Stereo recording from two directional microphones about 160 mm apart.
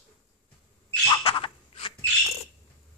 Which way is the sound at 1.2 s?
35° left (ahead or behind).